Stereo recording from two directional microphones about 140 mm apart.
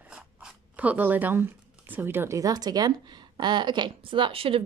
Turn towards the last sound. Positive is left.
turn(degrees=-40)  # may be behind; listen again after turning